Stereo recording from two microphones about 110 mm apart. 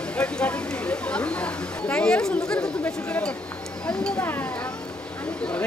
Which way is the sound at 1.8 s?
10° left (ahead or behind).